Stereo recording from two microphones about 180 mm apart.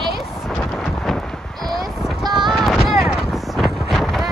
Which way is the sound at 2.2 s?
25° right (ahead or behind).